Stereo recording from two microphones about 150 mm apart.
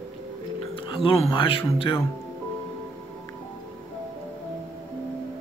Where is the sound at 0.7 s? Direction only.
35° left (ahead or behind).